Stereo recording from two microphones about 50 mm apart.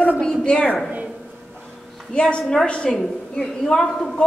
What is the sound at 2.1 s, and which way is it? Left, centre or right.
A woman's voice, left.